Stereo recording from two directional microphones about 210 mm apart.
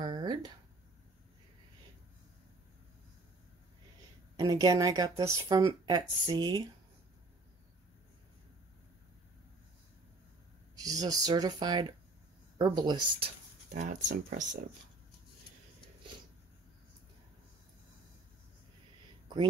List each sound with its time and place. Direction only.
0.0 s a sound: 20° right (ahead or behind)
4.4 s a woman's voice: 20° right (ahead or behind)
10.8 s speech: 15° right (ahead or behind)
14.1 s speech: 35° right (ahead or behind)